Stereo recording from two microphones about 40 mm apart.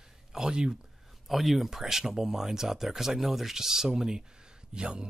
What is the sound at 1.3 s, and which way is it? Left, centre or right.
A man's voice, centre.